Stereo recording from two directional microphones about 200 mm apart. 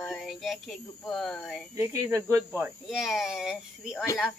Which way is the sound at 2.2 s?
10° right (ahead or behind).